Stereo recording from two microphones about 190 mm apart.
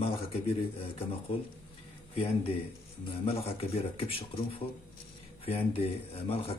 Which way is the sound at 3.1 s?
30° left (ahead or behind).